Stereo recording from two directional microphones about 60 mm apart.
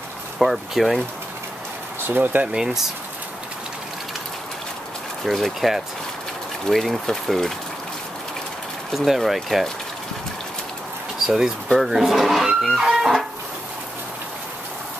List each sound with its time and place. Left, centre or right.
0.4 s speech: centre
2.0 s speech: right
2.4 s speech: centre
5.2 s speech: centre
8.9 s speech: centre
11.2 s speech: centre